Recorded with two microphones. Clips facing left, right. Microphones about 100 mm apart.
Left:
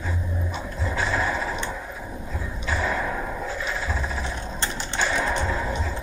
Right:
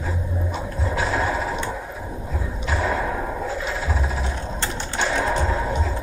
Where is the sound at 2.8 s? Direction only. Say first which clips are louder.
Right 3 dB; 30° right (ahead or behind).